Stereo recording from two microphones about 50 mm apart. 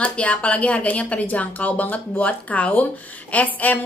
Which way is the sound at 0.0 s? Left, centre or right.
Left.